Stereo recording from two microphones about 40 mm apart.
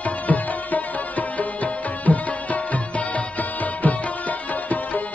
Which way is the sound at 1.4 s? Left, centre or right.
Left.